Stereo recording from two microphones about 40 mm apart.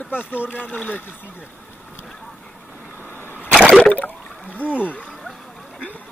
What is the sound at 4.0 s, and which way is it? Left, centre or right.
Water, left.